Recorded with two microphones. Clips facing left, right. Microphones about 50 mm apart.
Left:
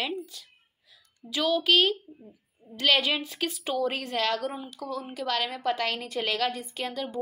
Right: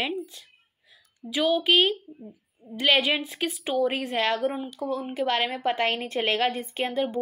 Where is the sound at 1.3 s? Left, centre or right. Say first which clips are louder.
Right 2 dB; centre.